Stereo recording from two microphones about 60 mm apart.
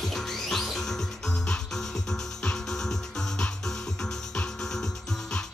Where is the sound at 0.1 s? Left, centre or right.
Centre.